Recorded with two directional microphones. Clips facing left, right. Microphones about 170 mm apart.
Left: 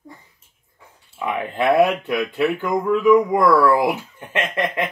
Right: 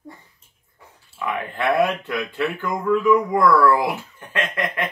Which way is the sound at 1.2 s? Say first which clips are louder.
Left 3 dB; 25° left (ahead or behind).